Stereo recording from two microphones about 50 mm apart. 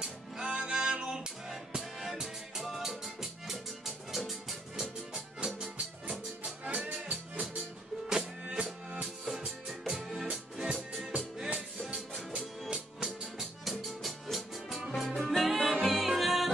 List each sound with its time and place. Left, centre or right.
0.0 s music: centre
5.1 s music: centre
6.6 s music: right
9.2 s music: centre
13.0 s music: centre